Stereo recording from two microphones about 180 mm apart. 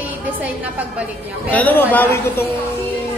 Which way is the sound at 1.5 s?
10° left (ahead or behind).